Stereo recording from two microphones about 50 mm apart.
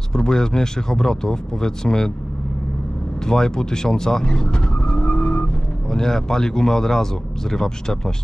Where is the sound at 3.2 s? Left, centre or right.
Centre.